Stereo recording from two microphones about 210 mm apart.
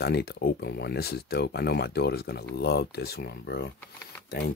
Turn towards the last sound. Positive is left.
turn(degrees=50)  # may be behind; listen again after turning